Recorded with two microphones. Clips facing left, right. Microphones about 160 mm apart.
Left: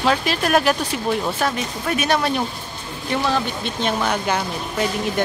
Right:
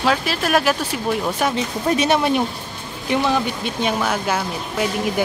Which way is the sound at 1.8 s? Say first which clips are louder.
Right 3 dB; 25° right (ahead or behind).